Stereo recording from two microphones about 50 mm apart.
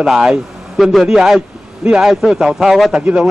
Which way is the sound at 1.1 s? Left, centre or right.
Centre.